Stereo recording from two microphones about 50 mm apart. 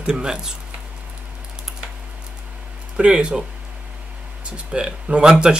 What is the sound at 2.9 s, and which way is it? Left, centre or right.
Speech, centre.